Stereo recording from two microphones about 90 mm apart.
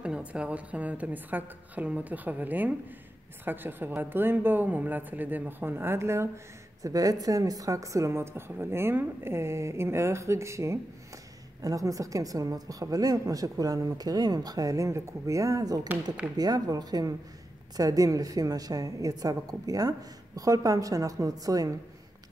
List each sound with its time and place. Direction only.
0.0 s a woman's voice: 15° right (ahead or behind); by 21.7 s 40° right (ahead or behind)